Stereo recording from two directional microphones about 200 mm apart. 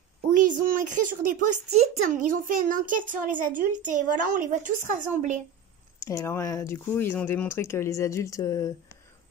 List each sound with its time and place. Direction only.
0.5 s speech: 40° right (ahead or behind)
5.9 s speech: 15° left (ahead or behind)